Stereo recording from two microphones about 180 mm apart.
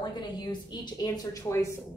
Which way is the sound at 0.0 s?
25° left (ahead or behind).